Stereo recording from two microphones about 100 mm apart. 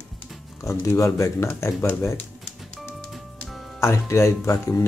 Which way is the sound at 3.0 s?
Centre (ahead or behind).